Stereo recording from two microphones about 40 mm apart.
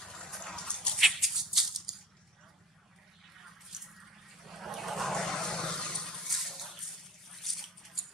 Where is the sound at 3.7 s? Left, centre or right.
Centre.